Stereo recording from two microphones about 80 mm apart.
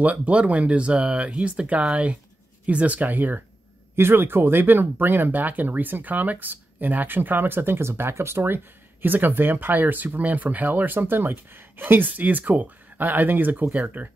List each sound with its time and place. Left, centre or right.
0.0 s speech: centre